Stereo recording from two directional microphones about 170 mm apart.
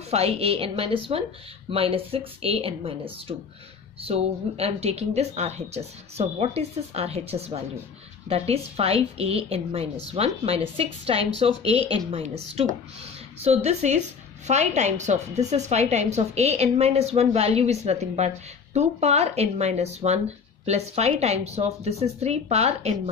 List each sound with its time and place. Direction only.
0.1 s a woman's voice: 35° right (ahead or behind)